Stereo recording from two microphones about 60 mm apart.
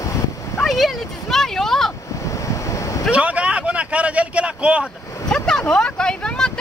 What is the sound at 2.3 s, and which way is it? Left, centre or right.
Waves, left.